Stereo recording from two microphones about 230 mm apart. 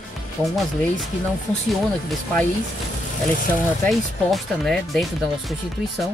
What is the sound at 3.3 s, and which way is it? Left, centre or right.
Speech, left.